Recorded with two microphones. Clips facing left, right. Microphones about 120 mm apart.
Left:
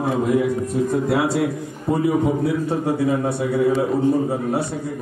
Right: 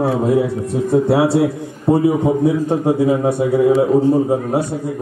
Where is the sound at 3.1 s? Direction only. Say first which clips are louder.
Right 5 dB; 10° right (ahead or behind).